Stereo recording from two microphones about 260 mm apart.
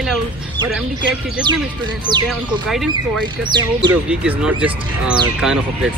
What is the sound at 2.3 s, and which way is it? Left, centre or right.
Speech, centre.